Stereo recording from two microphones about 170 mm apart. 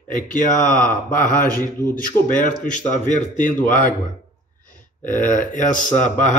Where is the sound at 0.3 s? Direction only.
50° left (ahead or behind).